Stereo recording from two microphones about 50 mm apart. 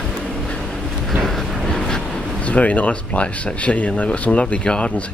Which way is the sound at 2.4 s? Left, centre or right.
Left.